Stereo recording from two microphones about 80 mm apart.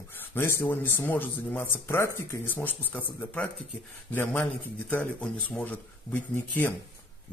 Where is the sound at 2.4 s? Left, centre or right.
Left.